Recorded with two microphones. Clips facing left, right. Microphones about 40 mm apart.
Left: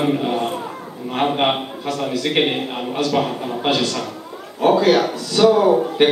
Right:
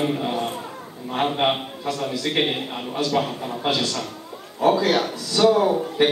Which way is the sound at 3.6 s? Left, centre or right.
Left.